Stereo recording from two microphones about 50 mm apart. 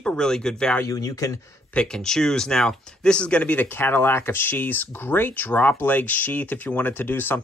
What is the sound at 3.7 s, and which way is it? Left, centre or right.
Speech, left.